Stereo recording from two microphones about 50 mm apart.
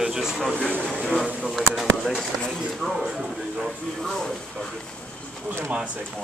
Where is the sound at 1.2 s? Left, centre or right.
Centre.